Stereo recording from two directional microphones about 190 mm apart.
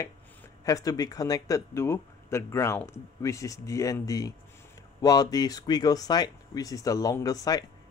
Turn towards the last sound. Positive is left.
turn(degrees=20)  # may be behind; listen again after turning